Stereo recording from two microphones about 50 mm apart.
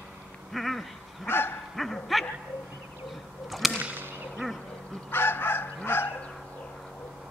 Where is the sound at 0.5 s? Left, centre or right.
Centre.